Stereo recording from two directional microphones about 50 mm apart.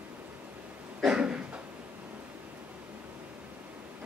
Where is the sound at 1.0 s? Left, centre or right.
Centre.